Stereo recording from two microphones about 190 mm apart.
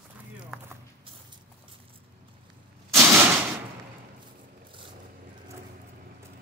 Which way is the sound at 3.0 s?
10° right (ahead or behind).